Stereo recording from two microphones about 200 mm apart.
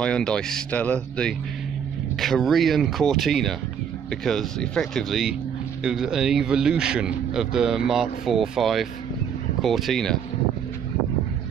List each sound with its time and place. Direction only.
0.0 s speech: 5° left (ahead or behind)